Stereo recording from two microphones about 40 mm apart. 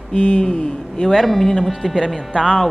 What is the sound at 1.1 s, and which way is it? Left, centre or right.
Speech, centre.